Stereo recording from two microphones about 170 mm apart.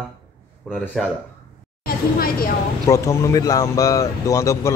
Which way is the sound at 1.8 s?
60° left (ahead or behind).